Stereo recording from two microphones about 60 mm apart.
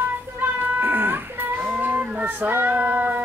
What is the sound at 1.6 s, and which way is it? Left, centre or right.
Child singing, right.